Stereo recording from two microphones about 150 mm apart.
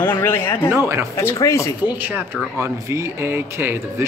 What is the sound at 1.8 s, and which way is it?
Speech, 10° right (ahead or behind).